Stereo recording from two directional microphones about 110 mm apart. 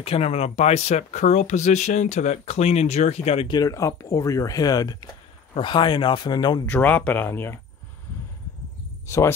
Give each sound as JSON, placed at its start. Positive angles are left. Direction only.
{"t": 0.0, "sound": "speech", "side_deg": 65}
{"t": 3.4, "sound": "speech", "side_deg": 35}
{"t": 6.6, "sound": "speech", "side_deg": 15}
{"t": 9.0, "sound": "speech", "side_deg": 25}